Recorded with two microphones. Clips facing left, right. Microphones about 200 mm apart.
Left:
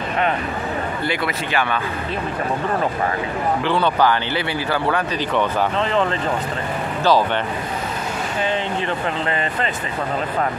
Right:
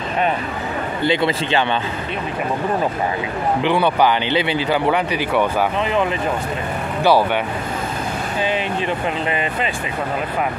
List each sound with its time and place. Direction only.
1.0 s a man's voice: 25° right (ahead or behind)
3.6 s speech: 15° right (ahead or behind)
9.3 s speech: 15° right (ahead or behind)